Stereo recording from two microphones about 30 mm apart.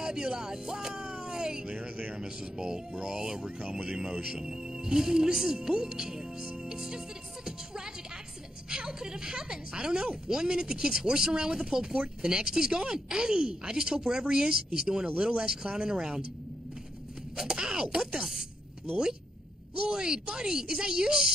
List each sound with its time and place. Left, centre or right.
0.0 s a woman's voice: right
1.8 s speech: right
2.1 s a woman's voice: right
7.4 s music: right
8.6 s a woman's voice: right
17.4 s speech: right
19.7 s a woman's voice: right